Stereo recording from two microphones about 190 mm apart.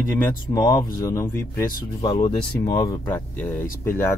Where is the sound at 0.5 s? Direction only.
20° left (ahead or behind).